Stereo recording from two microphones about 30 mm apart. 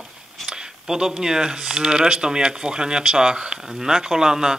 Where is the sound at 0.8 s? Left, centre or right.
Centre.